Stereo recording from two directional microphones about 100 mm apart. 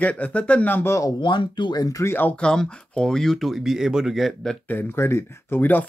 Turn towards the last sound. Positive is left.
turn(degrees=20)  # may be behind; listen again after turning